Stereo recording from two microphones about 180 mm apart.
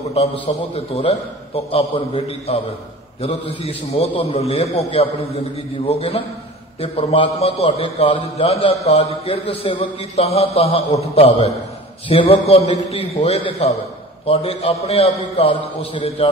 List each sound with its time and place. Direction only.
0.1 s a man's voice: 35° left (ahead or behind)